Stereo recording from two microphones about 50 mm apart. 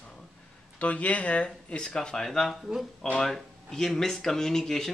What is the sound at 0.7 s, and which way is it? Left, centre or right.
Speech, left.